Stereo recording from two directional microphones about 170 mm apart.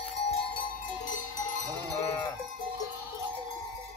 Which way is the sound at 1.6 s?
25° right (ahead or behind).